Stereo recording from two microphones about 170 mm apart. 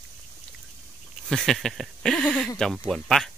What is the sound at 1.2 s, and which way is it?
Speech, centre (ahead or behind).